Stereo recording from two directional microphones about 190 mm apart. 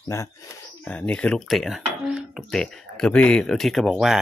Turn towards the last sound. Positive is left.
turn(degrees=0)  # may be behind; listen again after turning